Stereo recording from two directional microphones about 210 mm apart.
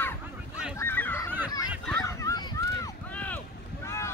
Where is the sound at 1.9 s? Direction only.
15° left (ahead or behind).